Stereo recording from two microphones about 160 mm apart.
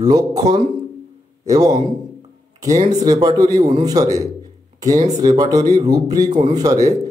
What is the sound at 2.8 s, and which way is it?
A man's voice, 25° right (ahead or behind).